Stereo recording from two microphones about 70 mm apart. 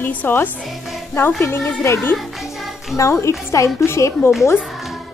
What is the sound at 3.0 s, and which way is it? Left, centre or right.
A woman's voice, left.